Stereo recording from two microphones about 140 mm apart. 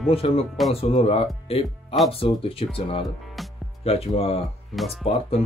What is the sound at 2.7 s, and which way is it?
Speech, 40° left (ahead or behind).